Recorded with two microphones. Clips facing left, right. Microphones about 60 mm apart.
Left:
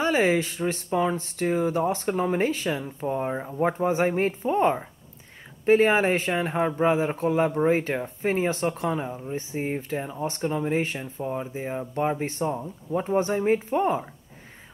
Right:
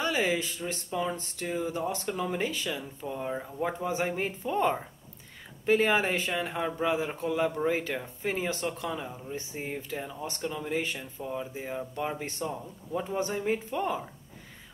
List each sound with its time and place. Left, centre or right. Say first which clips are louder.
0.0 s speech: left 6 dB; left
8.5 s speech: left 7 dB; left
8.9 s speech: left 6 dB; left